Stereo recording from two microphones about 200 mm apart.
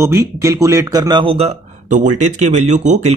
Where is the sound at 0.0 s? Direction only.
15° right (ahead or behind).